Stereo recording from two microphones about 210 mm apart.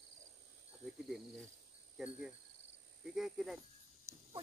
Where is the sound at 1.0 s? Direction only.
Centre (ahead or behind).